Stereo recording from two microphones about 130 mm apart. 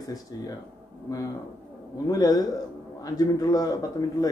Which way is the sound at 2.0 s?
30° left (ahead or behind).